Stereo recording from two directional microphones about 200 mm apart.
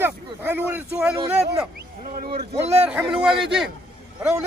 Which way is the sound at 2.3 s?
30° right (ahead or behind).